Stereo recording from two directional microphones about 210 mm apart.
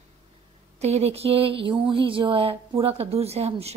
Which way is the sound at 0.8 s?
30° right (ahead or behind).